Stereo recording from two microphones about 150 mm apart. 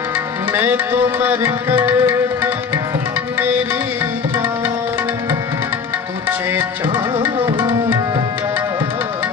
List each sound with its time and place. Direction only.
0.5 s music: 15° right (ahead or behind)
7.4 s tabla: 30° right (ahead or behind)